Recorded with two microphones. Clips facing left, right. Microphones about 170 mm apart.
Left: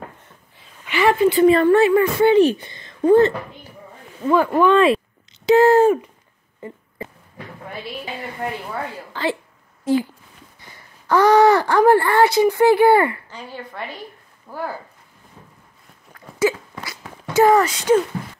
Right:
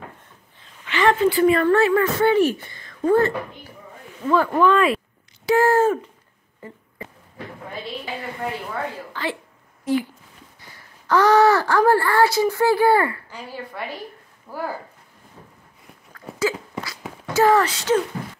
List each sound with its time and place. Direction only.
0.6 s a sound: 10° left (ahead or behind)
1.4 s speech: 25° left (ahead or behind)
9.1 s a woman's voice: 30° left (ahead or behind)
11.1 s speech: 15° left (ahead or behind)
14.5 s speech: 10° right (ahead or behind)
16.1 s a sound: 25° left (ahead or behind)
17.3 s speech: 20° left (ahead or behind)